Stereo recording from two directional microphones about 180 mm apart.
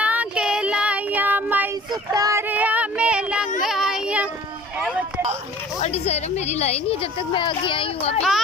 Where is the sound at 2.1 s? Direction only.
20° right (ahead or behind).